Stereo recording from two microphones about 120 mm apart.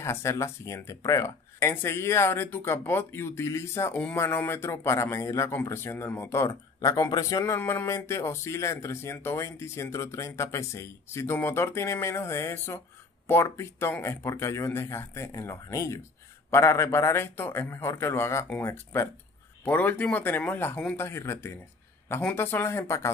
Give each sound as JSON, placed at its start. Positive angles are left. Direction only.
{"t": 0.0, "sound": "speech", "side_deg": 25}
{"t": 3.9, "sound": "speech", "side_deg": 10}
{"t": 19.6, "sound": "speech", "side_deg": 15}